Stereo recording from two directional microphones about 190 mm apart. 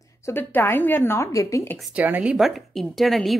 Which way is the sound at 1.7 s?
5° right (ahead or behind).